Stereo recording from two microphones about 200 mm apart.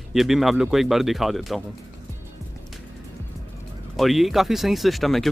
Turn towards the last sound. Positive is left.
turn(degrees=0)  # may be behind; listen again after turning